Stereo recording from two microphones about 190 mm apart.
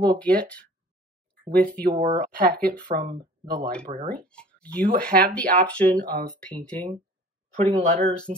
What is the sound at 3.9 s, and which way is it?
Speech, 30° right (ahead or behind).